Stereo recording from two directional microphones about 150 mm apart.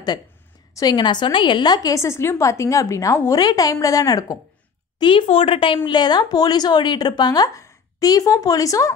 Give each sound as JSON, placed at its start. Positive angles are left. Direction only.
{"t": 0.7, "sound": "a woman's voice", "side_deg": 30}